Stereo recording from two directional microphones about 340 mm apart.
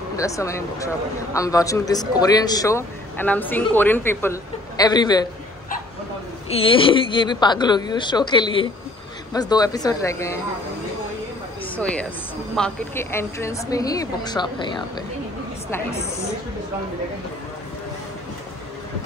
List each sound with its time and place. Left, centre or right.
0.1 s speech: centre
6.5 s speech: centre
11.7 s speech: centre